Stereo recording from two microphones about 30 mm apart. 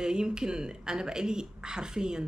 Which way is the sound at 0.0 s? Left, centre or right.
Right.